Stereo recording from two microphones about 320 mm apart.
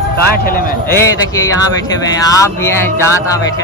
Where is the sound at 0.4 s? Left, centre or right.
Left.